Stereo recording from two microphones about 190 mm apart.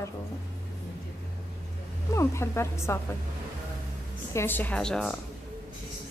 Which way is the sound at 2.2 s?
15° left (ahead or behind).